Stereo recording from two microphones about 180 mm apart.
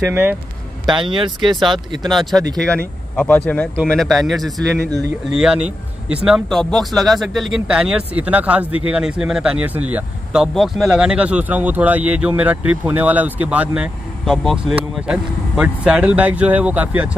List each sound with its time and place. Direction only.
0.0 s speech: 15° right (ahead or behind)
0.8 s speech: 25° right (ahead or behind)
2.0 s speech: centre (ahead or behind)